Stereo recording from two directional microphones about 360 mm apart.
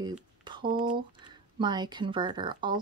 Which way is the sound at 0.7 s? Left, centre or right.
Centre.